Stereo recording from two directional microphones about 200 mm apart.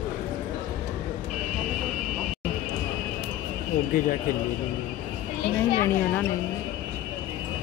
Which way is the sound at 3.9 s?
45° left (ahead or behind).